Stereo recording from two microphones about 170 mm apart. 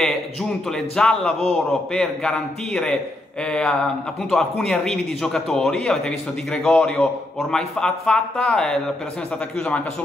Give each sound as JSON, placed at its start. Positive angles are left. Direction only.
{"t": 0.9, "sound": "speech", "side_deg": 5}